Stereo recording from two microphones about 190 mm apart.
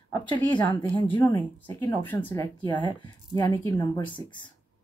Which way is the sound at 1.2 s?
10° left (ahead or behind).